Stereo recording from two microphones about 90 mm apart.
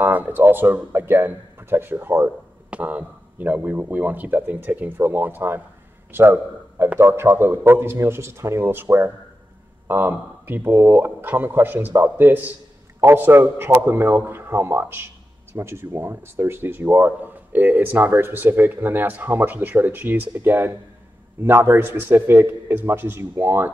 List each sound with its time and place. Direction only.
0.0 s speech: 20° right (ahead or behind)